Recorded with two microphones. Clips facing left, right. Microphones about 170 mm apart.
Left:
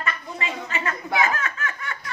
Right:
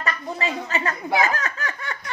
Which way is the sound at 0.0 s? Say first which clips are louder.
Right 4 dB; 35° right (ahead or behind).